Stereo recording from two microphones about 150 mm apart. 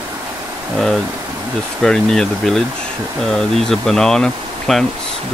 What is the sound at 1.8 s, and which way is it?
Speech, 5° left (ahead or behind).